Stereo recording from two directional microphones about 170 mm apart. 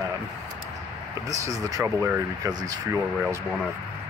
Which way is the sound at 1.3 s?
20° right (ahead or behind).